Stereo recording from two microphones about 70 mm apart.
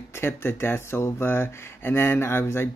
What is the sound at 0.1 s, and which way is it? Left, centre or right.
Speech, left.